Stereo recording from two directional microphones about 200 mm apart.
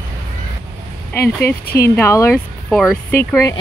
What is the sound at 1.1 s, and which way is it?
Speech, 15° left (ahead or behind).